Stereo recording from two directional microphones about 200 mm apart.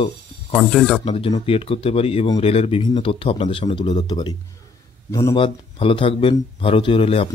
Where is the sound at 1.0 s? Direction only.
30° left (ahead or behind).